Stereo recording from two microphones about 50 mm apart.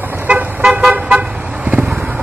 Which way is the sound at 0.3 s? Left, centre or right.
Right.